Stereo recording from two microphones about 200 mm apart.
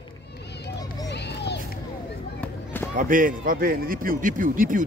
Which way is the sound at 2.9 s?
40° right (ahead or behind).